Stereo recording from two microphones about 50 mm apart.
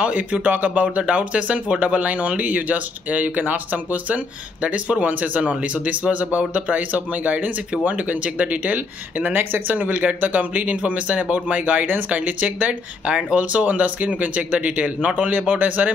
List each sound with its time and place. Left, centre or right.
0.0 s speech: right